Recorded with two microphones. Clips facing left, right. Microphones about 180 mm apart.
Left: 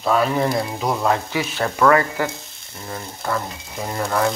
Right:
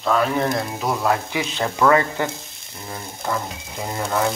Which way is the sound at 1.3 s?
20° right (ahead or behind).